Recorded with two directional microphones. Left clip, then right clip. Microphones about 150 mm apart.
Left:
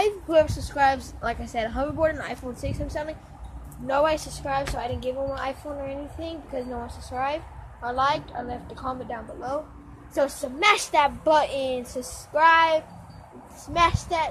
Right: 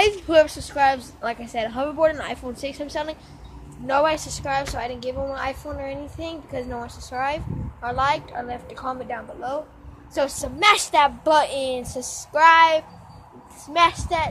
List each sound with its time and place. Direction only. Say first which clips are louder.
0.6 s a woman's voice: right 2 dB; 10° right (ahead or behind)
10.6 s a woman's voice: right 3 dB; 20° right (ahead or behind)